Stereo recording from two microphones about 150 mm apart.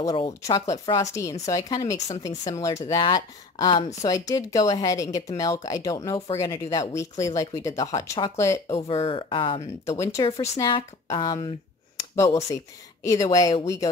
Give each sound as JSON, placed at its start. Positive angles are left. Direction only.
{"t": 0.0, "sound": "speech", "side_deg": 25}
{"t": 8.8, "sound": "speech", "side_deg": 35}
{"t": 9.8, "sound": "speech", "side_deg": 20}
{"t": 12.0, "sound": "a sound", "side_deg": 20}
{"t": 13.0, "sound": "speech", "side_deg": 20}